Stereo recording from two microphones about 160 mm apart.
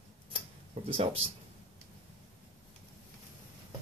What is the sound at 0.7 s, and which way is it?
Speech, 35° right (ahead or behind).